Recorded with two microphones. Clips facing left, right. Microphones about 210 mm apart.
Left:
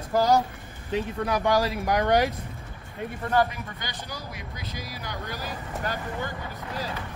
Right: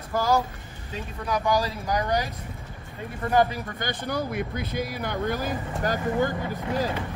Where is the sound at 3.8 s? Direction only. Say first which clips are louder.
Right 9 dB; 55° right (ahead or behind).